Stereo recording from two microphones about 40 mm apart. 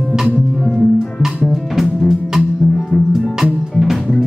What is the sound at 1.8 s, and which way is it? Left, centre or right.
Music, centre.